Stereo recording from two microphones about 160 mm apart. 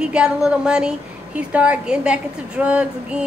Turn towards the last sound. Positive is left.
turn(degrees=-5)  # may be behind; listen again after turning